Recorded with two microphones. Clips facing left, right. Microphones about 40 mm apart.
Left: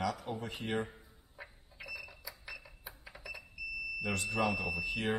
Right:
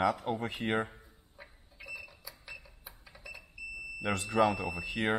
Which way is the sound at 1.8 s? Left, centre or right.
Centre.